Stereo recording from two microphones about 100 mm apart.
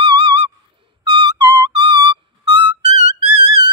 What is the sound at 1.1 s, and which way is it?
Owl, 55° right (ahead or behind).